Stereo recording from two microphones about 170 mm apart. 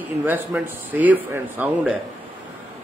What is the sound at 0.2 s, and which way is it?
A man's voice, 10° right (ahead or behind).